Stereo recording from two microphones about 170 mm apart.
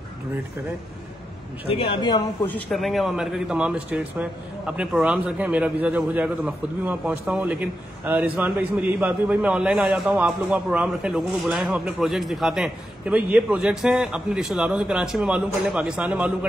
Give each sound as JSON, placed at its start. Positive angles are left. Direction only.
{"t": 1.7, "sound": "speech", "side_deg": 30}
{"t": 2.4, "sound": "speech", "side_deg": 5}